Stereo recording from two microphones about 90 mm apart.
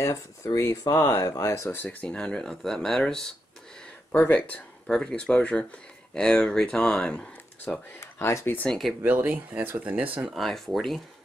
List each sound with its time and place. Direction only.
0.0 s speech: 35° left (ahead or behind)
1.2 s speech: 40° left (ahead or behind); by 3.3 s 5° left (ahead or behind)
4.1 s speech: 15° left (ahead or behind)
8.0 s speech: 30° left (ahead or behind)
8.6 s speech: centre (ahead or behind)
9.0 s speech: 20° right (ahead or behind)
10.3 s speech: centre (ahead or behind)